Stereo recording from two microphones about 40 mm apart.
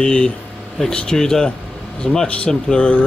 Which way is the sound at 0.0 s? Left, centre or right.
Left.